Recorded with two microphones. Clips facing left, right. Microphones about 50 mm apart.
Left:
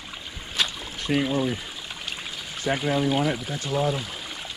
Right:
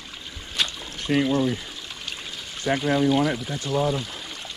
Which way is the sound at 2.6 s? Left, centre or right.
Centre.